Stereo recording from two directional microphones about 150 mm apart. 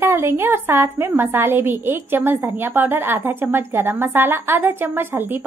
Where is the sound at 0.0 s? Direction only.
20° right (ahead or behind).